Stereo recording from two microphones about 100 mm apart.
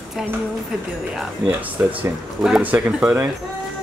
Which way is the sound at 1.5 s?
20° right (ahead or behind).